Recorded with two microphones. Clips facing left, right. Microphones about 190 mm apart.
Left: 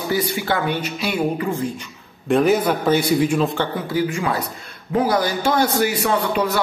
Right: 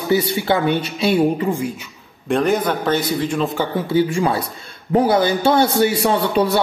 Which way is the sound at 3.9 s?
30° right (ahead or behind).